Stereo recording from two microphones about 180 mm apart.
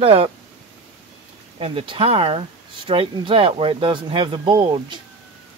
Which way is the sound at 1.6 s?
30° right (ahead or behind).